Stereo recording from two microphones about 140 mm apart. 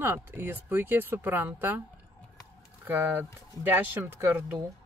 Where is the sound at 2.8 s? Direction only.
15° right (ahead or behind).